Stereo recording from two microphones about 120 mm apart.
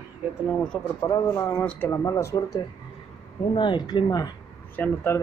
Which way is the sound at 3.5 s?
40° left (ahead or behind).